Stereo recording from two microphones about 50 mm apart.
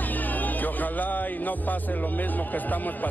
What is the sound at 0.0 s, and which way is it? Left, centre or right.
Music, left.